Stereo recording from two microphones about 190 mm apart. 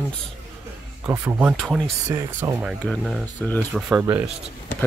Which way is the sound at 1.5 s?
Centre (ahead or behind).